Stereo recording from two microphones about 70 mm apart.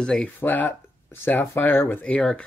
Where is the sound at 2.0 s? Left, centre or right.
Centre.